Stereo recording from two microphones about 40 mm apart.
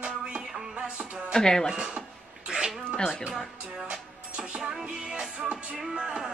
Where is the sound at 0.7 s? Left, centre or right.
Right.